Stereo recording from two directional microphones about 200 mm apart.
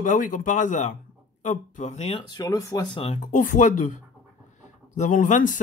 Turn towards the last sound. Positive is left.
turn(degrees=40)  # may be behind; listen again after turning